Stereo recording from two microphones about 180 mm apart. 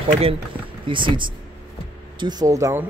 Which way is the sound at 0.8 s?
25° right (ahead or behind).